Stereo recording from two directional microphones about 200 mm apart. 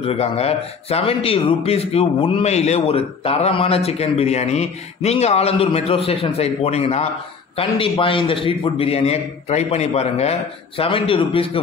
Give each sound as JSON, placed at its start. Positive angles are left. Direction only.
{"t": 0.0, "sound": "a man's voice", "side_deg": 30}